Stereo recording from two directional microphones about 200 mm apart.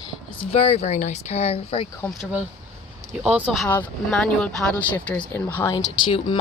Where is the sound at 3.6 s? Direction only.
5° left (ahead or behind).